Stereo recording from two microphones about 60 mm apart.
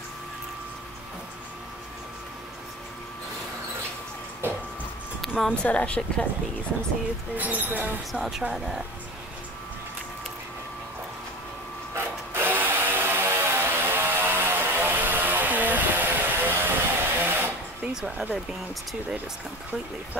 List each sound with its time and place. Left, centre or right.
4.4 s printer: right
5.5 s speech: left
7.3 s speech: right
8.1 s speech: centre
11.9 s tools: right
18.0 s speech: centre